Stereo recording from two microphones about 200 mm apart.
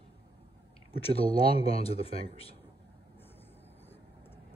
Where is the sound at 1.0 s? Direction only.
30° left (ahead or behind).